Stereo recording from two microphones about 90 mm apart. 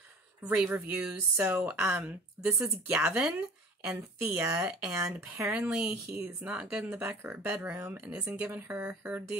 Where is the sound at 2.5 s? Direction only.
5° right (ahead or behind).